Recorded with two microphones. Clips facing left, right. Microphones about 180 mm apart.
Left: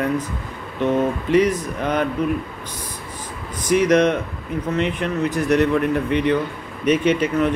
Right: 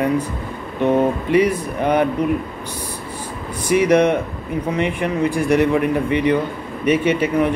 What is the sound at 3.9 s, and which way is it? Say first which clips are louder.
Speech: right 2 dB; 10° right (ahead or behind).